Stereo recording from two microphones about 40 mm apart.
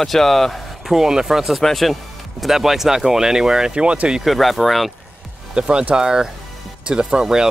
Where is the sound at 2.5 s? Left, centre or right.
Centre.